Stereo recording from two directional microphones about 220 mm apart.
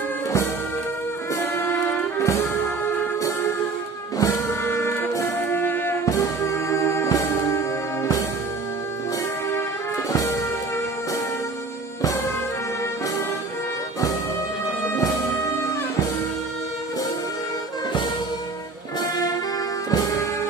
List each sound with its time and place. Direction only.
1.3 s music: 10° left (ahead or behind)
4.2 s music: 10° left (ahead or behind)
10.1 s music: 15° left (ahead or behind)
18.9 s music: 15° left (ahead or behind)